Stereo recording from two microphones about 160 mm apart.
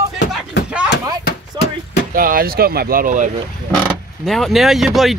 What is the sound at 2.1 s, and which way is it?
Speech, 65° right (ahead or behind).